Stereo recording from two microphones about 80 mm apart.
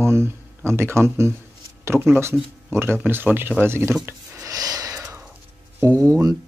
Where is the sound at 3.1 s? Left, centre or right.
Right.